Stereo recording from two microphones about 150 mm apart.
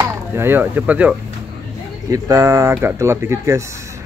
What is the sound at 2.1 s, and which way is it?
Speech, 20° right (ahead or behind).